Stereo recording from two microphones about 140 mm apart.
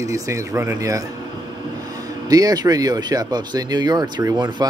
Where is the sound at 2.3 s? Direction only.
25° right (ahead or behind).